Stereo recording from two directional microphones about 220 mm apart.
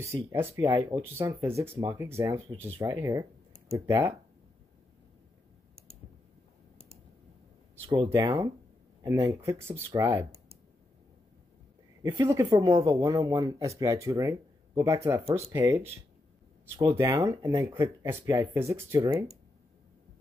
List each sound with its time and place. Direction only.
0.0 s speech: 10° right (ahead or behind)
7.8 s speech: 20° right (ahead or behind)
12.0 s speech: 15° right (ahead or behind)